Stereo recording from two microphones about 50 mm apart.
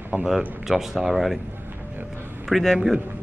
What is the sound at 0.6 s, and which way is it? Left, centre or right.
Speech, centre.